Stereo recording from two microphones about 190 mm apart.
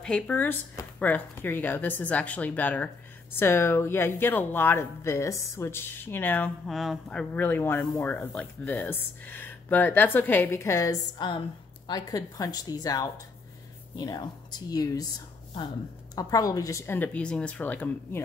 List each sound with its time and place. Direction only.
0.0 s a woman's voice: 5° left (ahead or behind)